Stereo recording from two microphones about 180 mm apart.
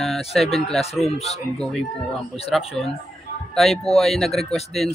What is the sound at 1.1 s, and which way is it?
Speech, 35° left (ahead or behind).